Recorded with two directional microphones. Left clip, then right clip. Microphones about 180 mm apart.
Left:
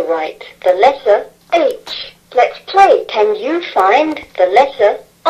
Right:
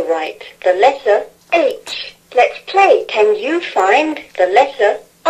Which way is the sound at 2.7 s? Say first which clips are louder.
Left 3 dB; 25° right (ahead or behind).